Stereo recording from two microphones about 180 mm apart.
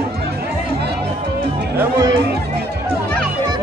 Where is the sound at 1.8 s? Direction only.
15° right (ahead or behind).